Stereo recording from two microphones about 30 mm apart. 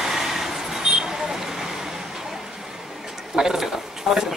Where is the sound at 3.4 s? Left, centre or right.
Centre.